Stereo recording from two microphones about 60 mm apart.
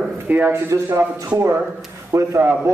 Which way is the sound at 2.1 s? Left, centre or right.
Right.